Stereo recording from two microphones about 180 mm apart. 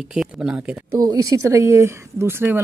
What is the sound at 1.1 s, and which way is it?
Speech, 20° right (ahead or behind).